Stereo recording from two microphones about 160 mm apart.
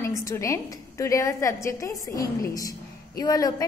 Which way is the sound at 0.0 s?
20° left (ahead or behind).